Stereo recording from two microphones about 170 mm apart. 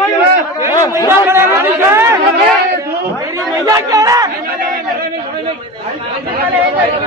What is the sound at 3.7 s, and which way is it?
Chatter, 20° right (ahead or behind).